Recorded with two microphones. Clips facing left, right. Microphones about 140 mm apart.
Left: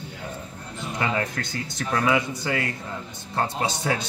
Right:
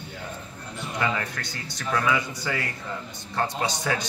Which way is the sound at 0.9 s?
25° left (ahead or behind).